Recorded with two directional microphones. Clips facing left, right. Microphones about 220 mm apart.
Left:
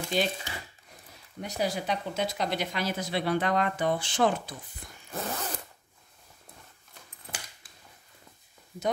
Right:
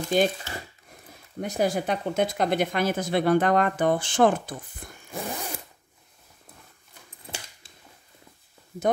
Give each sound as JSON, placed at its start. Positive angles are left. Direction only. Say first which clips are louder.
{"t": 0.1, "sound": "speech", "louder": "right 6 dB", "side_deg": -50}
{"t": 1.4, "sound": "speech", "louder": "right 6 dB", "side_deg": -50}
{"t": 5.1, "sound": "zipper", "louder": "right 1 dB", "side_deg": -15}